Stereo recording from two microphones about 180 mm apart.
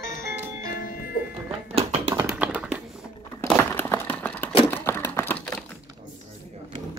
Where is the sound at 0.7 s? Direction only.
55° left (ahead or behind).